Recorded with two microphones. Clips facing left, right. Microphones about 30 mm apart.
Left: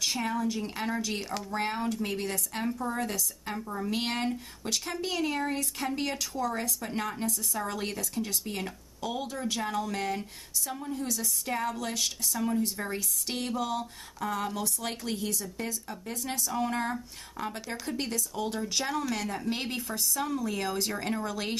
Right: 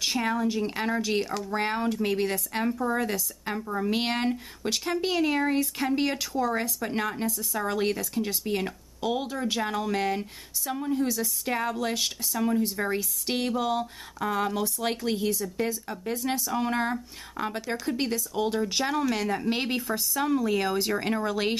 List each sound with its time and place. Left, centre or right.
0.0 s a woman's voice: right